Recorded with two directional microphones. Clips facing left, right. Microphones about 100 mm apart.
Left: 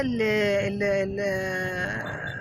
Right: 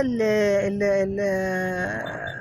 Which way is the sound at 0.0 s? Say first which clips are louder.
Right 3 dB; 25° right (ahead or behind).